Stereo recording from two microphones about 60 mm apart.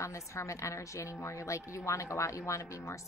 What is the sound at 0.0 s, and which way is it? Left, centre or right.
A woman's voice, left.